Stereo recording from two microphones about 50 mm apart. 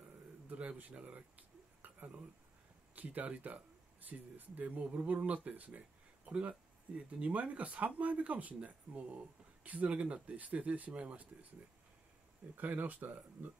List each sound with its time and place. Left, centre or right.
0.5 s speech: right
1.8 s a sound: right
3.0 s speech: right
12.5 s speech: right